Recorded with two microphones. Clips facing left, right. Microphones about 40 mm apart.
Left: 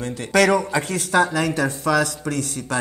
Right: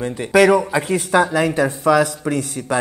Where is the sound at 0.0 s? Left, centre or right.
Centre.